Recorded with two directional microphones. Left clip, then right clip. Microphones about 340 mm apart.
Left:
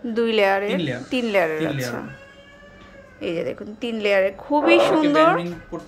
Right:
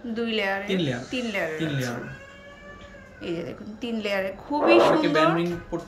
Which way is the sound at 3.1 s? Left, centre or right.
Centre.